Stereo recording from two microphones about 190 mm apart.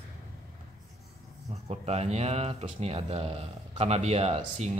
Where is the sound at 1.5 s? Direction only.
35° right (ahead or behind).